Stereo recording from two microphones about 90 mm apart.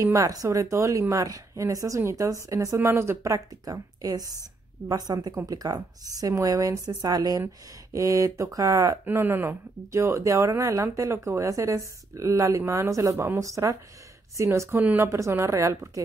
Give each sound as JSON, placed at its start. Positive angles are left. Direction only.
{"t": 0.0, "sound": "a woman's voice", "side_deg": -35}
{"t": 9.0, "sound": "speech", "side_deg": -25}
{"t": 14.8, "sound": "a woman's voice", "side_deg": -20}
{"t": 15.0, "sound": "speech", "side_deg": -35}